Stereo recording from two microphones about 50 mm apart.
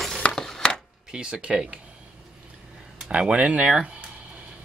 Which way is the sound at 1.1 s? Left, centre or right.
Right.